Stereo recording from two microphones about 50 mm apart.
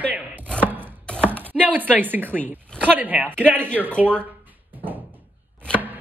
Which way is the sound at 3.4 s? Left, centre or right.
Right.